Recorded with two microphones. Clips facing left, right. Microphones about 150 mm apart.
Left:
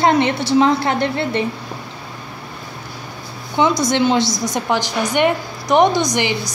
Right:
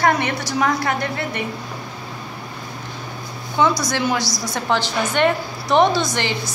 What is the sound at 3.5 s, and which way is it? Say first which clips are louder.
A woman's voice: left 3 dB; 20° left (ahead or behind).